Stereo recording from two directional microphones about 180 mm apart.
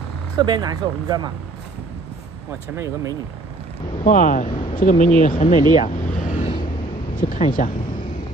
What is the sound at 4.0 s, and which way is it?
Speech, 45° left (ahead or behind).